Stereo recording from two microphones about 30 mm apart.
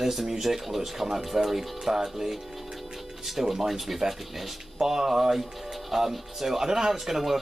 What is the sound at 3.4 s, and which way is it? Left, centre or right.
Speech, centre.